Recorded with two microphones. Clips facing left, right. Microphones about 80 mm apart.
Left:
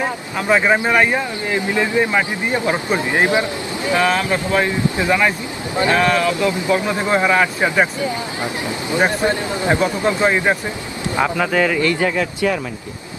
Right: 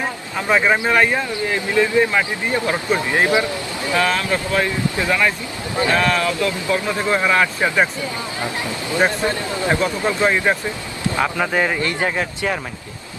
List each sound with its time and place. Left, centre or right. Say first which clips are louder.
0.5 s speech: left 1 dB; centre
11.5 s a man's voice: left 3 dB; right